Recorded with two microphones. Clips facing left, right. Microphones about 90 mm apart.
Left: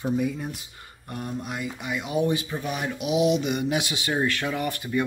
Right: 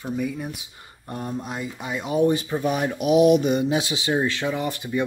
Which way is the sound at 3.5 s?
30° right (ahead or behind).